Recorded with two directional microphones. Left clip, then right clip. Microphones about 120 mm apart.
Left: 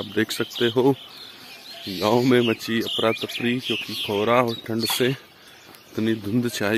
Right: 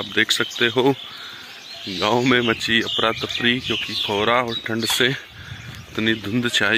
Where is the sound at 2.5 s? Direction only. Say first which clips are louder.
Right 7 dB; 15° left (ahead or behind).